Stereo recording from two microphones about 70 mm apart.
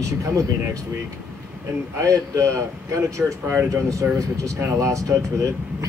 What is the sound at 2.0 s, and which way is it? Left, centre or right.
Speech, right.